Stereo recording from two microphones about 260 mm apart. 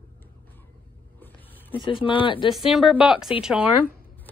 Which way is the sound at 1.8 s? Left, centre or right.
Centre.